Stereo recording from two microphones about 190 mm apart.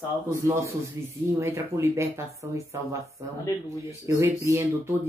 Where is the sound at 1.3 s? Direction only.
15° right (ahead or behind).